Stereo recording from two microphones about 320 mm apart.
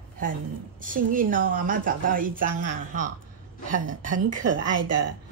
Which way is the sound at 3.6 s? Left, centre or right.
Right.